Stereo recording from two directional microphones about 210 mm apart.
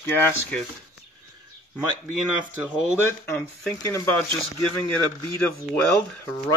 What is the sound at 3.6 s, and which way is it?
Speech, 5° left (ahead or behind).